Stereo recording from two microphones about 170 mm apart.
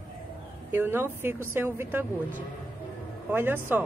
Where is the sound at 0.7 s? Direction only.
10° right (ahead or behind).